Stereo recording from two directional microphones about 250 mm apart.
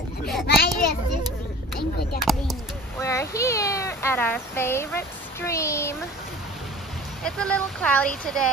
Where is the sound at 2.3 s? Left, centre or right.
Centre.